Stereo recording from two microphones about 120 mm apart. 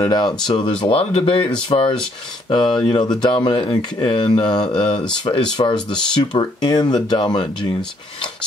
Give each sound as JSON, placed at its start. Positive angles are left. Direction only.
{"t": 0.0, "sound": "speech", "side_deg": 35}